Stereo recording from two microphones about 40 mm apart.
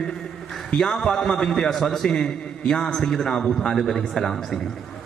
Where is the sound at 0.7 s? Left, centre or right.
Centre.